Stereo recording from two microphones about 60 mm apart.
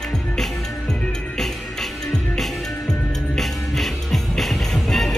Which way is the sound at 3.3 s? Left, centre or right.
Centre.